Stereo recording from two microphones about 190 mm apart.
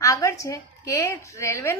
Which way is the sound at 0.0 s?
15° left (ahead or behind).